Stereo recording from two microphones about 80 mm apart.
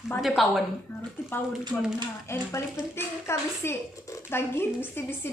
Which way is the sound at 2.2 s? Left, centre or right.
Left.